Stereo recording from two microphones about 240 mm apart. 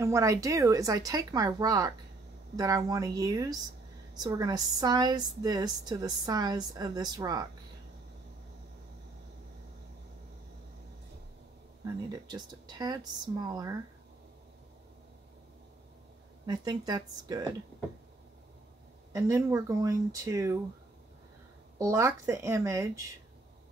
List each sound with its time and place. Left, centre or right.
0.0 s a woman's voice: centre
11.8 s a woman's voice: centre
16.4 s a woman's voice: centre
19.1 s a woman's voice: centre
21.7 s a woman's voice: centre